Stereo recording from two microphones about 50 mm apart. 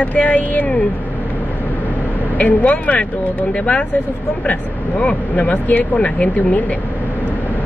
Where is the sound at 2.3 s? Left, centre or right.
Left.